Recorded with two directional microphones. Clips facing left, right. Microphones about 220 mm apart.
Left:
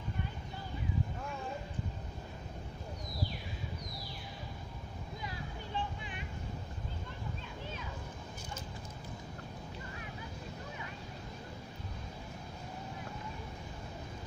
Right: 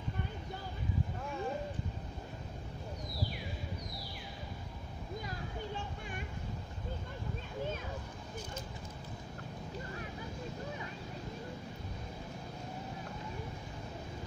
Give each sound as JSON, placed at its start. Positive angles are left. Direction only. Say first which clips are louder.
{"t": 5.8, "sound": "vehicle", "louder": "left 2 dB", "side_deg": -45}